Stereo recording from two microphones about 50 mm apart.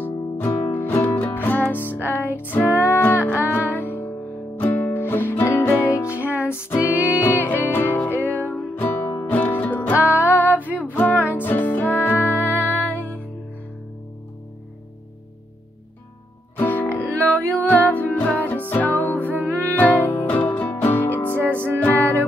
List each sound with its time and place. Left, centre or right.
0.0 s music: left
3.6 s music: left
5.9 s music: left
6.4 s music: left
9.9 s music: right
10.2 s female singing: left
10.8 s music: left
12.4 s music: right
12.9 s music: left
16.5 s music: left
21.5 s music: right
21.8 s music: left